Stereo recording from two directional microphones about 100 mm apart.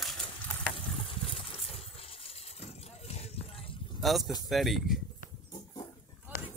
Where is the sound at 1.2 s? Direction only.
70° left (ahead or behind).